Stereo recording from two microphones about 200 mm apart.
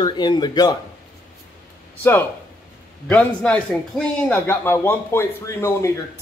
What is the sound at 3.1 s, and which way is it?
Speech, 5° left (ahead or behind).